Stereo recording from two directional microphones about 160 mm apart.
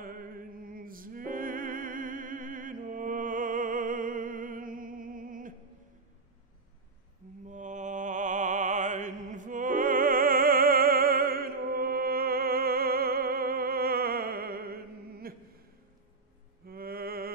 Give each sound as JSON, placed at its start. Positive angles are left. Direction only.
{"t": 0.0, "sound": "music", "side_deg": -60}
{"t": 7.4, "sound": "music", "side_deg": -50}
{"t": 16.6, "sound": "mantra", "side_deg": -70}